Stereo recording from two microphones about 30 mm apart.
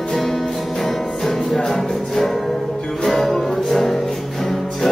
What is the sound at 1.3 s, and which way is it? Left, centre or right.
Music, centre.